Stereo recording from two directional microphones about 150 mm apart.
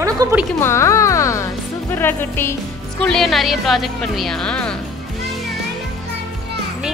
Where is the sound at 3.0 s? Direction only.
5° left (ahead or behind).